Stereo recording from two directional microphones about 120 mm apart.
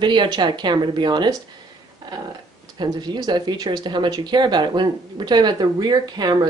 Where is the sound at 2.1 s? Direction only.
35° right (ahead or behind).